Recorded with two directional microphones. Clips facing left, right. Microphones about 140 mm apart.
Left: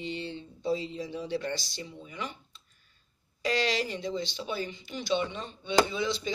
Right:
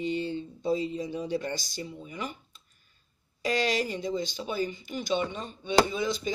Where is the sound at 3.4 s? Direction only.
45° right (ahead or behind).